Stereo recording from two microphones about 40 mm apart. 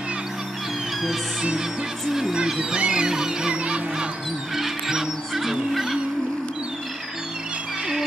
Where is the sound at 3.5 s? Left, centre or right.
Right.